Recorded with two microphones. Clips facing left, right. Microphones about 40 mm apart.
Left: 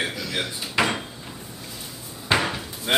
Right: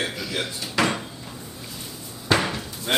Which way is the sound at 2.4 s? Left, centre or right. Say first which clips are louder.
Even; centre.